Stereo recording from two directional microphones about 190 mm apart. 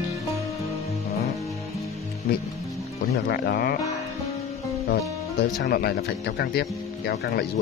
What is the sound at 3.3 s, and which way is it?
Speech, 55° left (ahead or behind).